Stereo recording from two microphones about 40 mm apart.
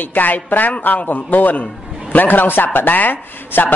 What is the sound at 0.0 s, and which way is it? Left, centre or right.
A man's voice, left.